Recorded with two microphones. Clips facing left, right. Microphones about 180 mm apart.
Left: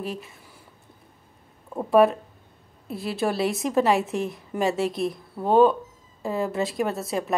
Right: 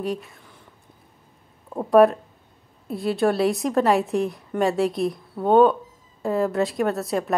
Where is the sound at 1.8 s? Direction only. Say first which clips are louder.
Right 3 dB; centre (ahead or behind).